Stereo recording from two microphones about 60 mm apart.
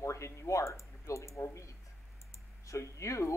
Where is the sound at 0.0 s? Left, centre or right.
Left.